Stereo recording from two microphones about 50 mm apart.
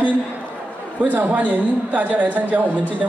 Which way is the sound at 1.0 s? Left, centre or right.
Right.